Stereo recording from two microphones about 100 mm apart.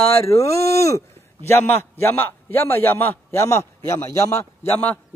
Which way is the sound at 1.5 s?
20° left (ahead or behind).